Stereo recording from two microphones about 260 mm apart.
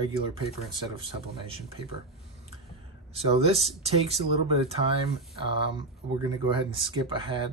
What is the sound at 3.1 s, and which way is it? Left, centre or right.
Speech, right.